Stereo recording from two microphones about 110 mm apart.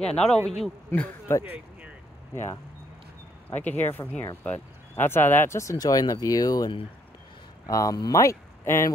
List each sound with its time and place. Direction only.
0.0 s a man's voice: 10° left (ahead or behind)
0.9 s a man's voice: 20° left (ahead or behind)